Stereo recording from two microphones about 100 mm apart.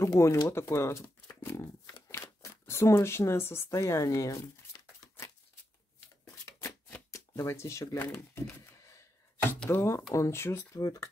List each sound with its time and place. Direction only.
0.0 s speech: 30° left (ahead or behind)
6.6 s typewriter: 25° left (ahead or behind)
8.0 s speech: 20° left (ahead or behind)
9.7 s speech: 30° left (ahead or behind)